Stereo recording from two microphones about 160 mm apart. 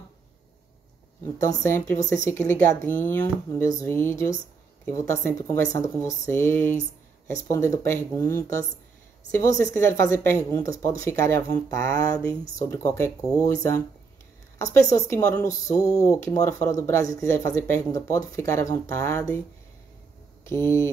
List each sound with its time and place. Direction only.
1.2 s speech: 20° left (ahead or behind)
20.4 s speech: 15° left (ahead or behind)